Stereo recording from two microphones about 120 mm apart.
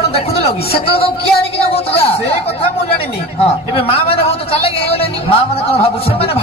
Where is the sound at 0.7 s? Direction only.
50° left (ahead or behind).